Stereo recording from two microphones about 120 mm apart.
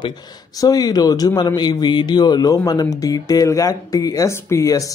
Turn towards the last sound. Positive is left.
turn(degrees=25)  # may be behind; listen again after turning